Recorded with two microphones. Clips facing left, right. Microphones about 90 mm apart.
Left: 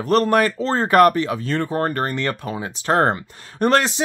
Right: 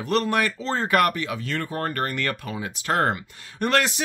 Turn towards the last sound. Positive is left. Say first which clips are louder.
# left 5 dB
turn(degrees=30)  # may be behind; listen again after turning